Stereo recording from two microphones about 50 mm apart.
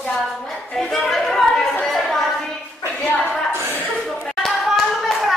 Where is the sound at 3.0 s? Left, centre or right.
Left.